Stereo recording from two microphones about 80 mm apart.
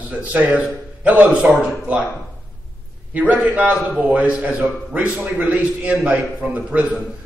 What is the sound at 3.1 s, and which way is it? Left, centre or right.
A man's voice, centre.